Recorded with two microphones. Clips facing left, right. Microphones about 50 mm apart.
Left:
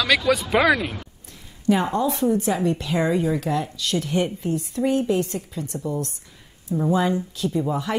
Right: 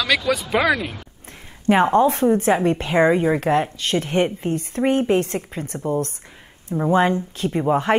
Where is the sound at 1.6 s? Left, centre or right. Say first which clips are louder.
Right 5 dB; right.